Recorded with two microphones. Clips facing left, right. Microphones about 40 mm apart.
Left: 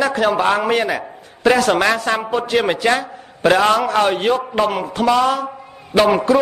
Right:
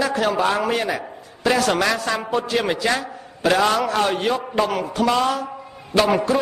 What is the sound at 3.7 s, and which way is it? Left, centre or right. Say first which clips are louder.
A man's voice: left 4 dB; left.